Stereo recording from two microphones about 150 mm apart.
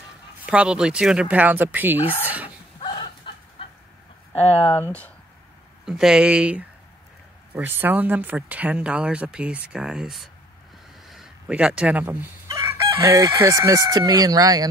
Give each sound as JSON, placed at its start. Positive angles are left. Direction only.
{"t": 0.5, "sound": "speech", "side_deg": -5}
{"t": 2.8, "sound": "a sound", "side_deg": 35}
{"t": 4.3, "sound": "speech", "side_deg": 40}
{"t": 5.9, "sound": "speech", "side_deg": -5}